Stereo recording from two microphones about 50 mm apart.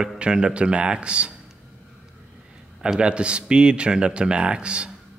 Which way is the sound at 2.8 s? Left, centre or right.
Centre.